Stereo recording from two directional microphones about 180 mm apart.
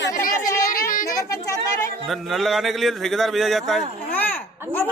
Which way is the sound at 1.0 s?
20° left (ahead or behind).